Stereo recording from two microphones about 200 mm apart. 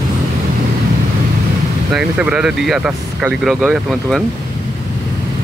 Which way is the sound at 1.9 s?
5° right (ahead or behind).